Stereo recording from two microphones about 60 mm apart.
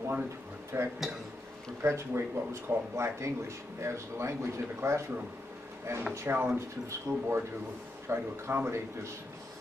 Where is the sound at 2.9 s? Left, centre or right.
Right.